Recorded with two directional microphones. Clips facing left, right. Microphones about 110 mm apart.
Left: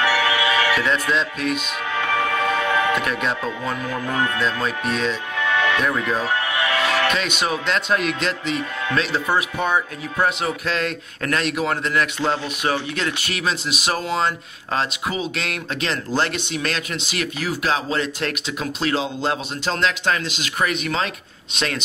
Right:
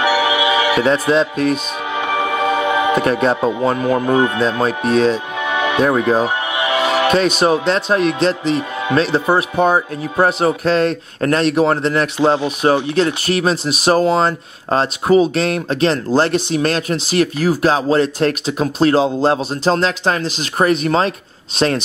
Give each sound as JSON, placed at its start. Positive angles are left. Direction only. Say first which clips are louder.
{"t": 0.0, "sound": "music", "louder": "right 4 dB", "side_deg": -15}
{"t": 0.8, "sound": "speech", "louder": "right 7 dB", "side_deg": -35}
{"t": 2.0, "sound": "music", "louder": "right 3 dB", "side_deg": -20}
{"t": 3.0, "sound": "speech", "louder": "right 9 dB", "side_deg": -35}
{"t": 4.6, "sound": "speech", "louder": "right 9 dB", "side_deg": -40}
{"t": 5.4, "sound": "music", "louder": "right 3 dB", "side_deg": -20}
{"t": 5.9, "sound": "speech", "louder": "right 8 dB", "side_deg": -30}
{"t": 6.2, "sound": "music", "louder": "right 3 dB", "side_deg": -20}
{"t": 7.1, "sound": "speech", "louder": "right 9 dB", "side_deg": -40}
{"t": 12.2, "sound": "speech", "louder": "right 8 dB", "side_deg": -20}
{"t": 12.9, "sound": "speech", "louder": "right 10 dB", "side_deg": -35}